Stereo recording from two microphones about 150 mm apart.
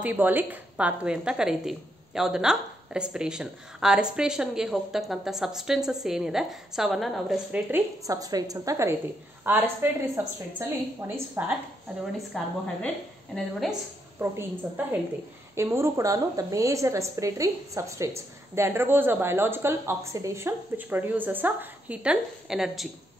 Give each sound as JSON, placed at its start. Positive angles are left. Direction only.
{"t": 0.0, "sound": "a woman's voice", "side_deg": -10}
{"t": 7.7, "sound": "a woman's voice", "side_deg": -25}
{"t": 12.3, "sound": "a woman's voice", "side_deg": 5}
{"t": 14.3, "sound": "a woman's voice", "side_deg": -15}